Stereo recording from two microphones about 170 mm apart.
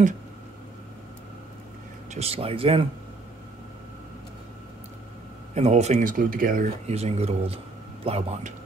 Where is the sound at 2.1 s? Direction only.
35° right (ahead or behind).